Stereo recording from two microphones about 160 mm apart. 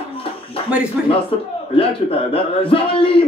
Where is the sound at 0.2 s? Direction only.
35° left (ahead or behind).